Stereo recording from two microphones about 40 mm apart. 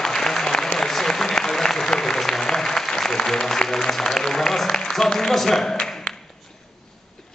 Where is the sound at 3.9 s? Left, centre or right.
Centre.